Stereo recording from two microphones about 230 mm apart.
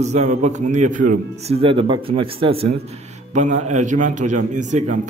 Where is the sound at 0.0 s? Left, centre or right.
Right.